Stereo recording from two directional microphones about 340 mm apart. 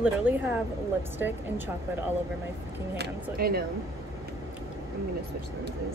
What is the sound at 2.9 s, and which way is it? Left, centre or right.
Speech, right.